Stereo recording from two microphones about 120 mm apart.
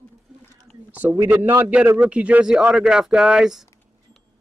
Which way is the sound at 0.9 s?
15° right (ahead or behind).